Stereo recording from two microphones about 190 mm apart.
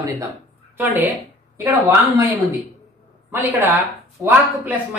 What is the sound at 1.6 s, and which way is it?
Speech, 15° right (ahead or behind).